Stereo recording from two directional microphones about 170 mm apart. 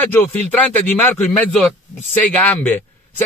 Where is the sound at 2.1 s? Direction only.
10° left (ahead or behind).